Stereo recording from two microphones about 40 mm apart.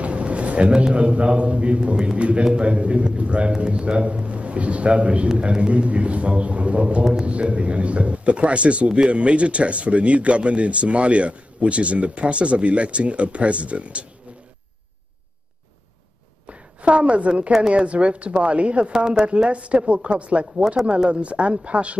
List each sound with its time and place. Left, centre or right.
0.0 s a man's voice: right
16.4 s a sound: right
17.5 s speech: right
18.9 s a woman's voice: centre
19.2 s speech: right